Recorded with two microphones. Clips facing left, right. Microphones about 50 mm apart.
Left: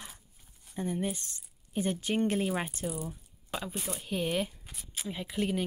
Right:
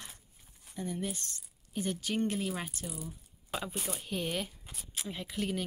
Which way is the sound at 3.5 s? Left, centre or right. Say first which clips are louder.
Left 1 dB; centre.